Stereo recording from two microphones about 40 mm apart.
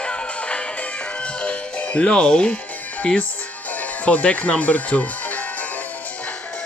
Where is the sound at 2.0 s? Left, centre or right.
Left.